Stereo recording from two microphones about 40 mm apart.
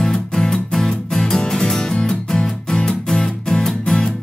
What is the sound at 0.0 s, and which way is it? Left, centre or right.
Music, centre.